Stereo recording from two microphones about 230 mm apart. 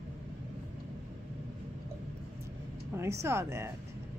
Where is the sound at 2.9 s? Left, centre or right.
Centre.